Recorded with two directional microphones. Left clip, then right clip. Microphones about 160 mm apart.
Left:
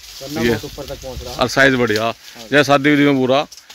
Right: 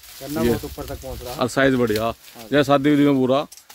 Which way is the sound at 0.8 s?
20° right (ahead or behind).